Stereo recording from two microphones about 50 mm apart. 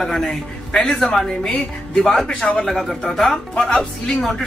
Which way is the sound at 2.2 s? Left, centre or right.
Left.